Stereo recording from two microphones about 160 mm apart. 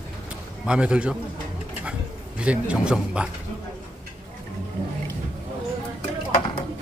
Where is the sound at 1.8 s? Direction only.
5° right (ahead or behind).